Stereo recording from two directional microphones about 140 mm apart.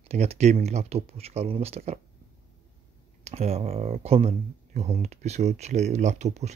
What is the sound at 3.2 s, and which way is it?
Speech, 50° right (ahead or behind).